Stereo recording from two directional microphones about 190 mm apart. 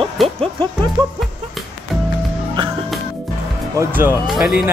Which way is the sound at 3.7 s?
10° right (ahead or behind).